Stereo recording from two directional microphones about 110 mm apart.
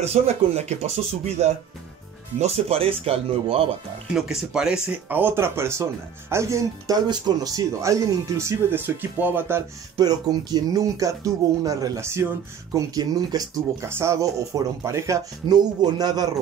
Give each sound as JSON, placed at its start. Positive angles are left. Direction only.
{"t": 0.0, "sound": "speech", "side_deg": -85}
{"t": 4.1, "sound": "speech", "side_deg": -5}
{"t": 4.8, "sound": "speech", "side_deg": -15}
{"t": 7.1, "sound": "speech", "side_deg": -35}
{"t": 9.9, "sound": "speech", "side_deg": -35}
{"t": 13.8, "sound": "speech", "side_deg": -25}
{"t": 15.4, "sound": "speech", "side_deg": -40}